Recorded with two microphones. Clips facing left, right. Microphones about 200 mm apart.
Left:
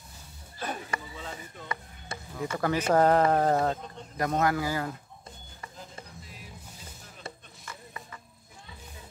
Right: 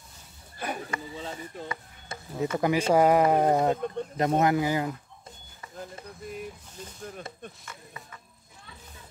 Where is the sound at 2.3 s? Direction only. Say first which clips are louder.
Right 4 dB; 20° right (ahead or behind).